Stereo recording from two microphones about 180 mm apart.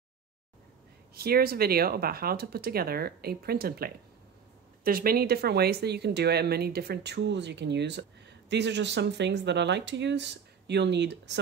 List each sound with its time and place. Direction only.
1.1 s speech: 60° right (ahead or behind); by 11.3 s 75° right (ahead or behind)